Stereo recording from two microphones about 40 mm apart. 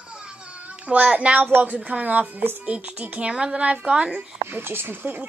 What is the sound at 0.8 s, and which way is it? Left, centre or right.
A child's voice, right.